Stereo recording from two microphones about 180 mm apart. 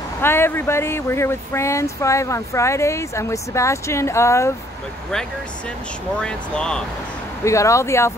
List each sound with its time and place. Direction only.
0.2 s speech: 15° left (ahead or behind)
6.2 s speech: 5° left (ahead or behind)
7.4 s speech: 15° left (ahead or behind)